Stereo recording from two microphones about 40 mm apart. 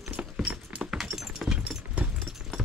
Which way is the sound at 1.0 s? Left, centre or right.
Centre.